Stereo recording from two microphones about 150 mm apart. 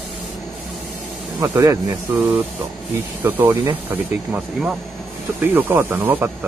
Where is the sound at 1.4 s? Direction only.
20° right (ahead or behind).